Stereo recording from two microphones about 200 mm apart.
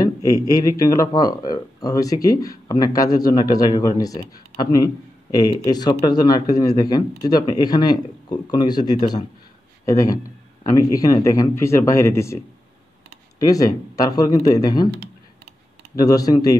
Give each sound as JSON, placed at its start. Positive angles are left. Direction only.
{"t": 0.0, "sound": "speech", "side_deg": 15}
{"t": 13.4, "sound": "speech", "side_deg": 15}
{"t": 16.0, "sound": "speech", "side_deg": 20}